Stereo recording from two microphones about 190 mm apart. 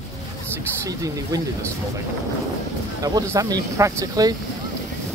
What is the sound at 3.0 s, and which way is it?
Speech, 20° right (ahead or behind).